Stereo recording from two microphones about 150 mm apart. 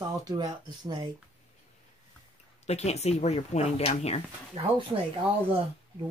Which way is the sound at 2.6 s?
45° left (ahead or behind).